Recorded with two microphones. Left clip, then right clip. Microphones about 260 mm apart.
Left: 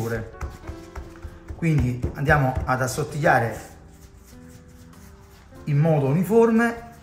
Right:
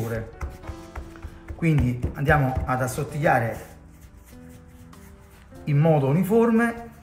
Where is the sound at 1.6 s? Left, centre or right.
Centre.